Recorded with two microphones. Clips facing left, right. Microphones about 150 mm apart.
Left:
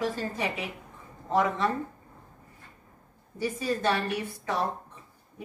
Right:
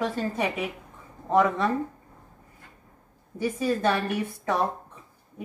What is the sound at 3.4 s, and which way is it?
A woman's voice, 55° right (ahead or behind).